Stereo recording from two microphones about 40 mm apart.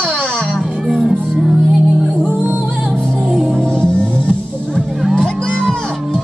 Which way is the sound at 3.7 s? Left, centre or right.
Left.